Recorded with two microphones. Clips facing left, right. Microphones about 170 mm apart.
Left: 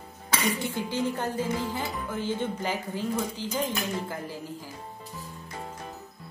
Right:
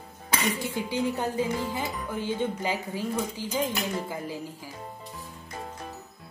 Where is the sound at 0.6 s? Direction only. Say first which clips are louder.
Even; 15° right (ahead or behind).